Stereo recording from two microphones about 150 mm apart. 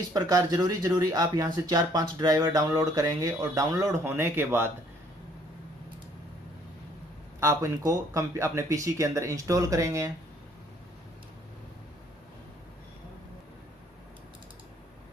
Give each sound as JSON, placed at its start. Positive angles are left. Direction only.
{"t": 0.1, "sound": "speech", "side_deg": -25}
{"t": 7.3, "sound": "speech", "side_deg": -20}